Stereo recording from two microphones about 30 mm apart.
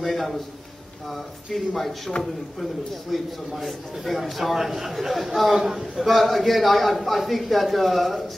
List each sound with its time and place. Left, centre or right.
0.0 s a man's voice: centre
1.8 s a man's voice: centre
5.5 s a man's voice: centre
5.9 s a man's voice: centre